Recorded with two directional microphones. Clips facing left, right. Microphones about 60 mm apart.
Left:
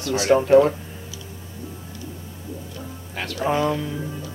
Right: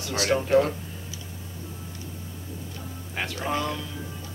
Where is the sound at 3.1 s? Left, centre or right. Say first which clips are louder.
Left 1 dB; centre.